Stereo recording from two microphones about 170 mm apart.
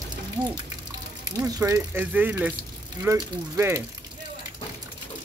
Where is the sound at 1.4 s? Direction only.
15° right (ahead or behind).